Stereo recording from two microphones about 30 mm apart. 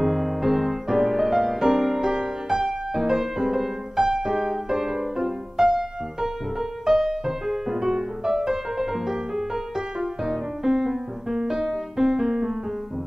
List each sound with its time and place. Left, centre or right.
0.0 s music: centre